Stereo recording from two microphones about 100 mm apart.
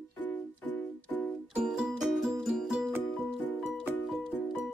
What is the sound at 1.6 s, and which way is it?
Music, 5° right (ahead or behind).